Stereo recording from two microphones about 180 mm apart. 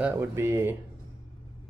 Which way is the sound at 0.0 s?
15° right (ahead or behind).